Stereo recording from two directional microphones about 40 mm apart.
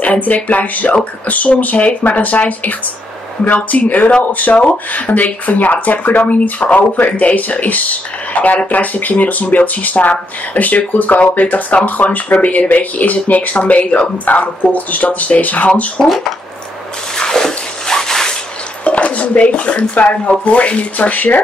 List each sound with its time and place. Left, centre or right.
0.0 s speech: left
17.2 s a sound: centre
18.9 s speech: left